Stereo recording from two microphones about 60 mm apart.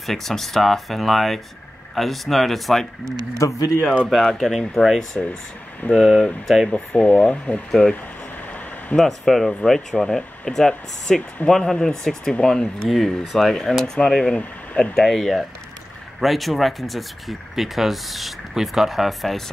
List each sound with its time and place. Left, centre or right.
0.0 s speech: centre
3.3 s speech: left
4.1 s speech: centre
8.9 s speech: centre